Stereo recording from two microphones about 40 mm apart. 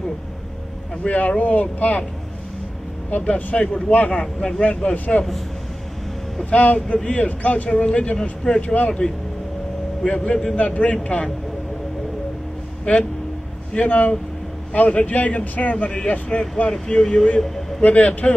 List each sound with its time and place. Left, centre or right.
1.0 s speech: left
3.1 s speech: left
4.2 s speech: left
4.9 s speech: left
6.5 s speech: left
10.0 s speech: left
10.5 s speech: left
12.9 s speech: left
13.7 s speech: left
14.7 s speech: left
15.7 s speech: left
17.0 s speech: centre
17.4 s a sound: centre
17.8 s speech: left